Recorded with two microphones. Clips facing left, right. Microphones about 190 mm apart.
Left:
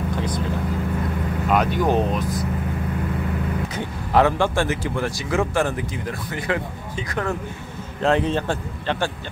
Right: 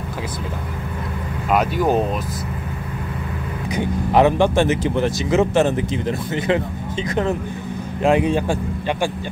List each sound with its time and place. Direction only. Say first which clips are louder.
1.5 s speech: right 2 dB; 5° right (ahead or behind)
3.7 s speech: right 4 dB; 20° right (ahead or behind)
8.0 s speech: right 3 dB; 15° right (ahead or behind)